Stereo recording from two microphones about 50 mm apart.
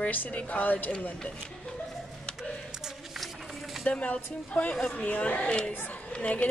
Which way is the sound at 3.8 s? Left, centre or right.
Left.